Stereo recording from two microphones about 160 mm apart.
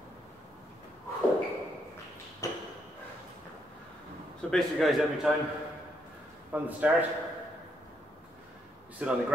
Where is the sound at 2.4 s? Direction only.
20° left (ahead or behind).